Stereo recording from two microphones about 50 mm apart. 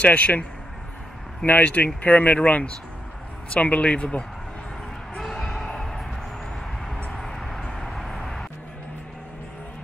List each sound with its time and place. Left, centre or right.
0.0 s speech: left
5.2 s a sound: centre
7.2 s vehicle: centre